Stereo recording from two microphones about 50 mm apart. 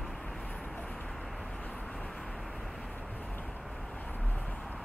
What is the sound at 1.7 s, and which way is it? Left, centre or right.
Vehicle, centre.